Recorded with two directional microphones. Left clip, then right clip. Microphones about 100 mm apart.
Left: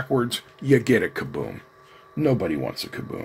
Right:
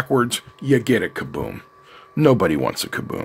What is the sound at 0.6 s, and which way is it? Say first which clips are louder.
Speech: right 1 dB; 25° right (ahead or behind).